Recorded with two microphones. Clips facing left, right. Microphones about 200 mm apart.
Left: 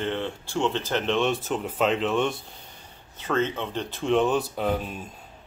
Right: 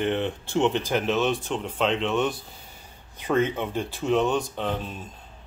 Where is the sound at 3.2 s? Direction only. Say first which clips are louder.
Right 2 dB; 10° right (ahead or behind); by 5.1 s 10° left (ahead or behind).